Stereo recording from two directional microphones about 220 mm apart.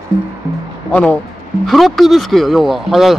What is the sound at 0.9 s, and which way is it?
Speech, 5° left (ahead or behind).